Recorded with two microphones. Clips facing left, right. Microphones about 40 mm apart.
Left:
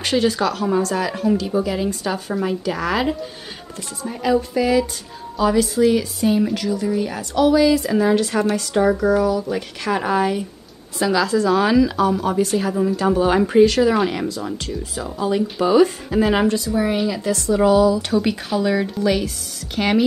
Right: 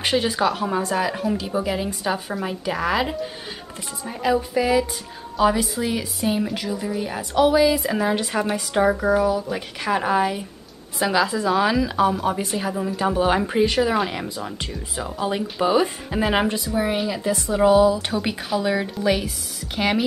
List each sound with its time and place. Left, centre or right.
0.0 s speech: centre
11.0 s speech: centre
14.2 s speech: centre